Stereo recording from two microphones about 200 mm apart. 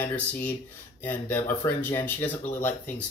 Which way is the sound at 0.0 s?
10° left (ahead or behind).